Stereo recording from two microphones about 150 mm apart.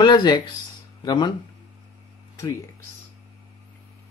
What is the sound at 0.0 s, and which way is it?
Speech, 30° left (ahead or behind).